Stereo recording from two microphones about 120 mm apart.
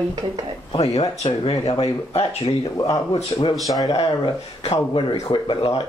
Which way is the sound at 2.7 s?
30° left (ahead or behind).